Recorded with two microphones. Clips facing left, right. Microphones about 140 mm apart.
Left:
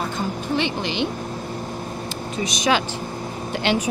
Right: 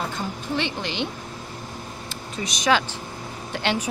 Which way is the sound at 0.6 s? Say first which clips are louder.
Left 3 dB; 15° left (ahead or behind).